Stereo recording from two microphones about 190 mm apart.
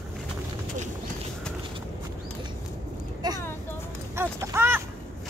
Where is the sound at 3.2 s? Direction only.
20° right (ahead or behind).